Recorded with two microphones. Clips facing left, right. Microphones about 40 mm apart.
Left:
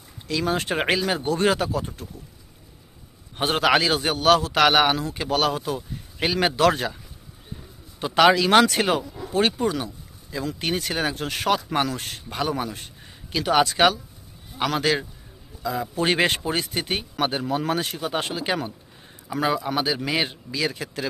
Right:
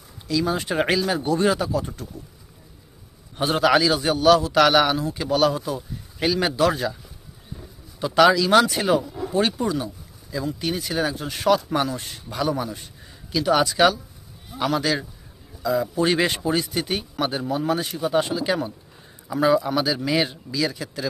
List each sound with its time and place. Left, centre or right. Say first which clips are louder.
0.3 s speech: right 1 dB; left
3.3 s a man's voice: right 1 dB; left
6.5 s speech: left 1 dB; left
8.0 s speech: right 1 dB; left
8.6 s speech: right 1 dB; left
11.9 s speech: even; left
12.3 s a man's voice: right 2 dB; left
19.4 s speech: right 4 dB; left